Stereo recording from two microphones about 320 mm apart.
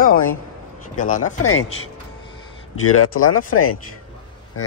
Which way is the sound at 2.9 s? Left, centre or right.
Left.